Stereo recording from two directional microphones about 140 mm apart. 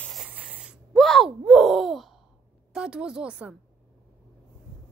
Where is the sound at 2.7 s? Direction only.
5° right (ahead or behind).